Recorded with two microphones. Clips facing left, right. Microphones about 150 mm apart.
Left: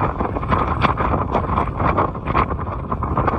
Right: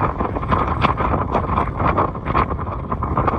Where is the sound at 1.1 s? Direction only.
5° left (ahead or behind).